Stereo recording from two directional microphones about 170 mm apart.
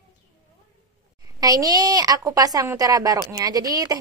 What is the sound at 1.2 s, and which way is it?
A woman's voice, 20° right (ahead or behind).